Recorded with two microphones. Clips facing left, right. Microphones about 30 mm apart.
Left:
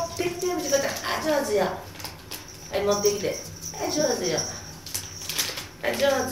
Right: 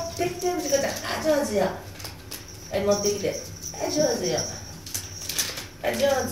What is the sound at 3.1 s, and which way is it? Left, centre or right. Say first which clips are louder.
A woman's voice: even; centre.